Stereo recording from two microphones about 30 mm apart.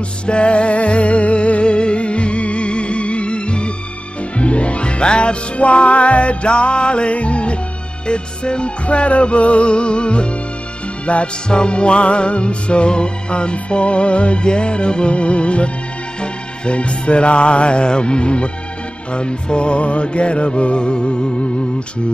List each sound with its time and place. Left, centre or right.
0.3 s music: left
5.6 s music: left
8.8 s music: left